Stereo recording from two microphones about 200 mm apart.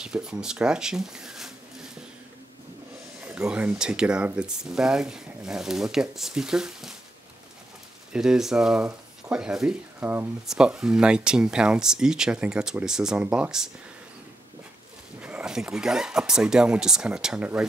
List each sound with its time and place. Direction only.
0.0 s speech: 5° right (ahead or behind)
3.3 s speech: 5° right (ahead or behind)
8.1 s speech: 5° right (ahead or behind)
15.1 s speech: 5° right (ahead or behind)